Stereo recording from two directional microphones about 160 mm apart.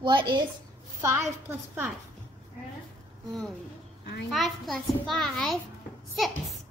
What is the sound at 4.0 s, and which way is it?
Speech, 90° left.